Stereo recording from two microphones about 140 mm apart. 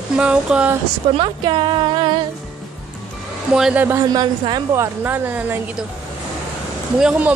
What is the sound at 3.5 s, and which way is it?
Speech, 10° right (ahead or behind).